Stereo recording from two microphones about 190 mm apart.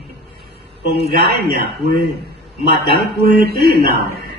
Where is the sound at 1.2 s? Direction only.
60° right (ahead or behind).